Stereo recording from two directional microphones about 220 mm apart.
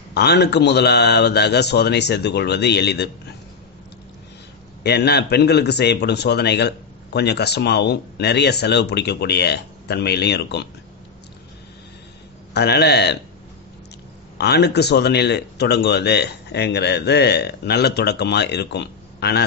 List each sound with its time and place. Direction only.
0.1 s speech: 50° left (ahead or behind)
4.8 s speech: 50° left (ahead or behind)
12.5 s speech: 50° left (ahead or behind)
14.4 s speech: 50° left (ahead or behind)